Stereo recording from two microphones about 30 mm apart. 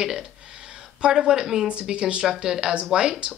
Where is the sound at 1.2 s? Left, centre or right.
Right.